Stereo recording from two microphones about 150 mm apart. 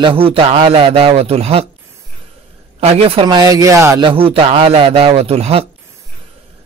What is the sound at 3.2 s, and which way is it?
Speech, 25° right (ahead or behind).